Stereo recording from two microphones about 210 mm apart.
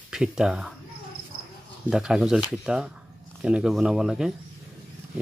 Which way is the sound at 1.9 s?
5° right (ahead or behind).